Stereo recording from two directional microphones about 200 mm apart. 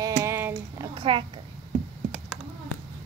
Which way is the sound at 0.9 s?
25° right (ahead or behind).